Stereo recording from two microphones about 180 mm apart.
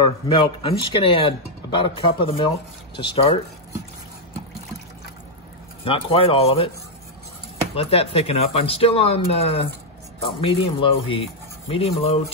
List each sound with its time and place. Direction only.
0.0 s speech: 25° left (ahead or behind)
5.9 s speech: 30° left (ahead or behind)
7.7 s speech: 35° left (ahead or behind)